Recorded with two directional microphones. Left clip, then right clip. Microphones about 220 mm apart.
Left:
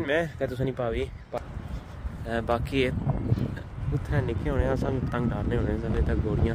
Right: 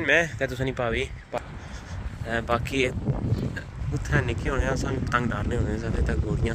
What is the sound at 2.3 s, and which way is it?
Speech, 20° left (ahead or behind).